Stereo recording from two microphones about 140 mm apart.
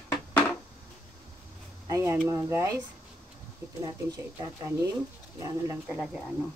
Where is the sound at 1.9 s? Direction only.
20° right (ahead or behind).